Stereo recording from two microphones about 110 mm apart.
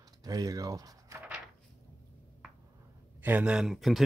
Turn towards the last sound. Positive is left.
turn(degrees=0)  # may be behind; listen again after turning